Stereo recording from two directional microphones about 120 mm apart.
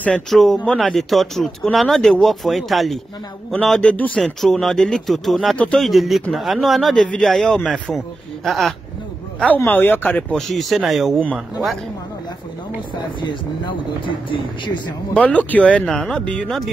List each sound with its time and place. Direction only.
0.0 s speech: 5° left (ahead or behind)
9.7 s speech: 15° left (ahead or behind)
10.3 s speech: centre (ahead or behind)
13.2 s speech: 40° left (ahead or behind)
15.1 s speech: 10° left (ahead or behind)